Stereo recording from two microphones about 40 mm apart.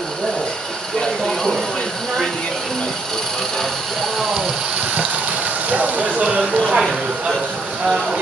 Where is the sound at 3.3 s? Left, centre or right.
Centre.